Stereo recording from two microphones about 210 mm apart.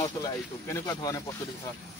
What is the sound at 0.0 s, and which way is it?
Speech, 15° left (ahead or behind).